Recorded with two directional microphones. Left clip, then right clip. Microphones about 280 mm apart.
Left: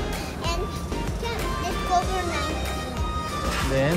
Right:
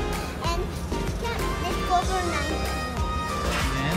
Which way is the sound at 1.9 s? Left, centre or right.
Centre.